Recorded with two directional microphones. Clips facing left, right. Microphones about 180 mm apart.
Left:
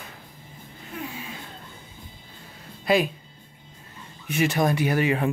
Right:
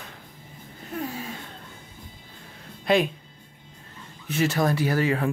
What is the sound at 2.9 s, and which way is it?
Speech, 5° left (ahead or behind).